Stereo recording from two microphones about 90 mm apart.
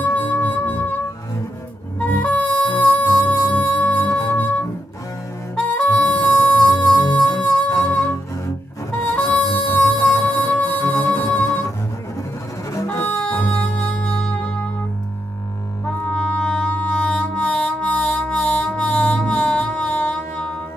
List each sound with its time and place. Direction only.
0.0 s music: 20° left (ahead or behind)
2.0 s music: 15° left (ahead or behind)
8.9 s harmonica: 15° left (ahead or behind)
9.3 s music: 15° left (ahead or behind)
12.8 s music: 20° left (ahead or behind)
15.8 s music: 15° left (ahead or behind)